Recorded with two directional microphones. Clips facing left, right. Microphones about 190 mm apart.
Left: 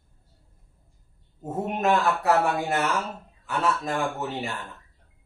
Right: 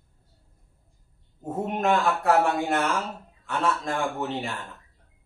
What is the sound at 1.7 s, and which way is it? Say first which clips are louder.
A man's voice: even; 5° left (ahead or behind).